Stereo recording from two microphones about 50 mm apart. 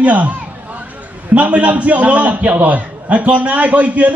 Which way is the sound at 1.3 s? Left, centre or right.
Right.